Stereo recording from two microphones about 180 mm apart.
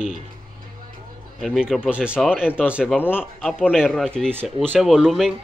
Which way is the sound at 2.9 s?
10° left (ahead or behind).